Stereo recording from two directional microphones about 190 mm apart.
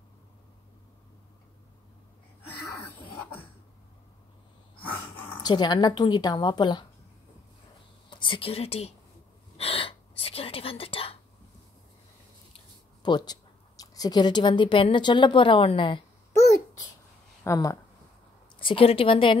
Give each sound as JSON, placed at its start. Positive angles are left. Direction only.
{"t": 5.4, "sound": "a woman's voice", "side_deg": 20}
{"t": 8.1, "sound": "speech", "side_deg": 25}
{"t": 9.6, "sound": "whispering", "side_deg": 30}
{"t": 13.0, "sound": "a woman's voice", "side_deg": 20}
{"t": 18.6, "sound": "a woman's voice", "side_deg": 30}